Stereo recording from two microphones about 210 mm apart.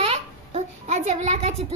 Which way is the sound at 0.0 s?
30° right (ahead or behind).